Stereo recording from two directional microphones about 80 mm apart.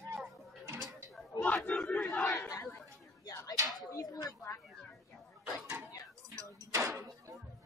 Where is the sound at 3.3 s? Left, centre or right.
Left.